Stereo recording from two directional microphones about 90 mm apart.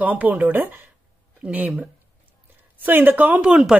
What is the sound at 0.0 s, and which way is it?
Speech, 15° right (ahead or behind).